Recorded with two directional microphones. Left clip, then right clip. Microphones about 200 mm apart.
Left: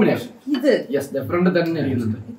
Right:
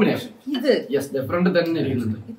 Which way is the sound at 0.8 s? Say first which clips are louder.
Even; centre (ahead or behind).